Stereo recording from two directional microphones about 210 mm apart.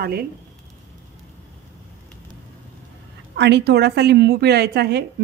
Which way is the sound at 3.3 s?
55° right (ahead or behind).